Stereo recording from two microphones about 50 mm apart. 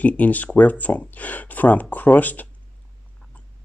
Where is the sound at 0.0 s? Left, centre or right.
Left.